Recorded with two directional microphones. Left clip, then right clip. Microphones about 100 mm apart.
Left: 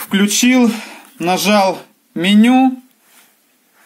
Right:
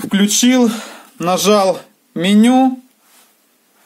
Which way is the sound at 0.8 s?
60° right (ahead or behind).